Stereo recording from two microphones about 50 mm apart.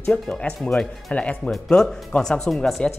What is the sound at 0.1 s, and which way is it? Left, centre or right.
Speech, centre.